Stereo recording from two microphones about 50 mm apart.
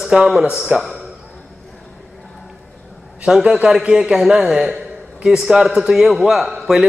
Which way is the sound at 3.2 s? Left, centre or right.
Centre.